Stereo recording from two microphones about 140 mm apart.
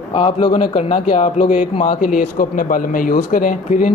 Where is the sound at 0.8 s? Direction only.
60° left (ahead or behind).